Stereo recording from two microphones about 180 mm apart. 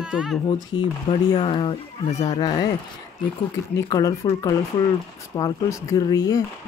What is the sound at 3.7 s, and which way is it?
Speech, 20° left (ahead or behind).